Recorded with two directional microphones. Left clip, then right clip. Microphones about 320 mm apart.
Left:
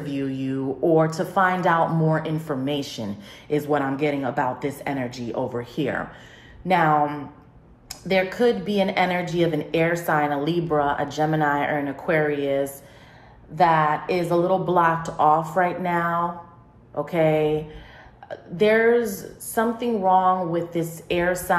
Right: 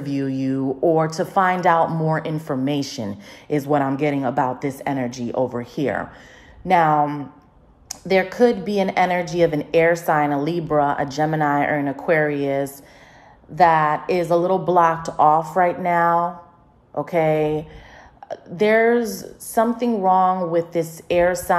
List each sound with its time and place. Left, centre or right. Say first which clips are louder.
0.2 s speech: right 4 dB; right